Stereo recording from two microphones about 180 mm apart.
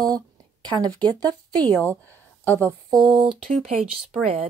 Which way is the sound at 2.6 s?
20° right (ahead or behind).